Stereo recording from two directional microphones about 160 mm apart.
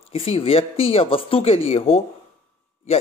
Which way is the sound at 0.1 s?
35° left (ahead or behind).